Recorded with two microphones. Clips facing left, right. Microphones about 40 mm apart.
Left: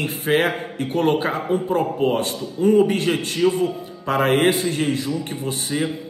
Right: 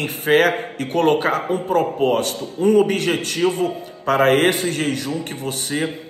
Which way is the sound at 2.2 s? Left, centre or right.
Right.